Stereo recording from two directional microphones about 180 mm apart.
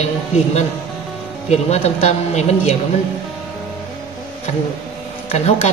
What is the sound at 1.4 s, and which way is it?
A man's voice, 35° left (ahead or behind).